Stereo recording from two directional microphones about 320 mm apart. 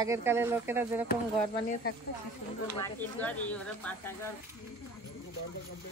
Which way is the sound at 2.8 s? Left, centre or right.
Centre.